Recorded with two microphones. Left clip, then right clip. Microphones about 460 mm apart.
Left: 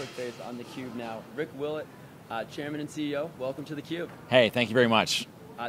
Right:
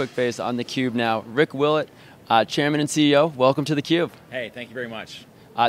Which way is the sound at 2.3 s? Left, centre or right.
Right.